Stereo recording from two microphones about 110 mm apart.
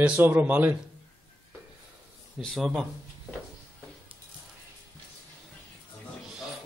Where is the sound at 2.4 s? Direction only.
Centre (ahead or behind).